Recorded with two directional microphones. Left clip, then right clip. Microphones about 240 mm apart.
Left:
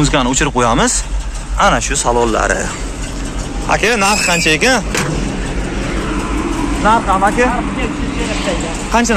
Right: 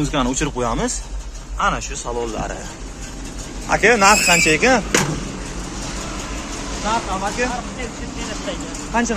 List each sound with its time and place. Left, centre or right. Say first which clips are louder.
0.0 s speech: left 7 dB; centre
3.6 s speech: even; centre
6.8 s speech: left 10 dB; left